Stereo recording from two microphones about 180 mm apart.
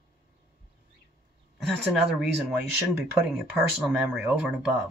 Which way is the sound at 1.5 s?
Centre (ahead or behind).